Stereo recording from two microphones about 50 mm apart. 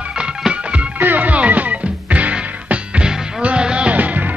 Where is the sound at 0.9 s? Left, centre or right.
Right.